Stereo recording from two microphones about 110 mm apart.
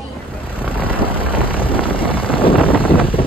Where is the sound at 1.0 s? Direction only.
55° left (ahead or behind).